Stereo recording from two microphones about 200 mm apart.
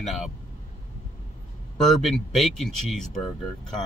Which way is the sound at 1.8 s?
Centre (ahead or behind).